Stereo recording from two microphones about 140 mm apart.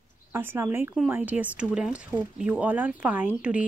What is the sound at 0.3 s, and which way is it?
Speech, 15° right (ahead or behind).